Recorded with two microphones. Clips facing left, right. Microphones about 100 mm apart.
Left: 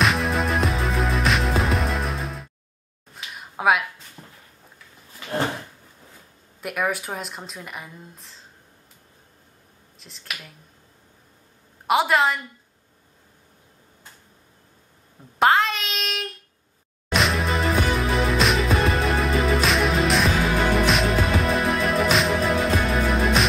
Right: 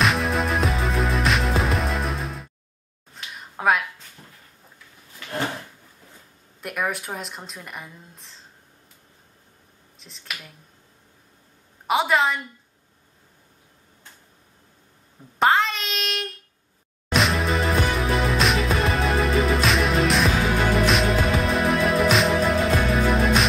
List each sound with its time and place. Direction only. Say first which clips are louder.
0.0 s music: even; centre (ahead or behind)
3.2 s a sound: left 2 dB; 5° left (ahead or behind)
4.2 s a sound: left 3 dB; 15° left (ahead or behind)
6.6 s speech: left 2 dB; centre (ahead or behind)
9.9 s speech: even; centre (ahead or behind)
11.9 s speech: left 1 dB; centre (ahead or behind)
15.3 s a child's voice: left 1 dB; centre (ahead or behind)
17.1 s music: right 1 dB; centre (ahead or behind)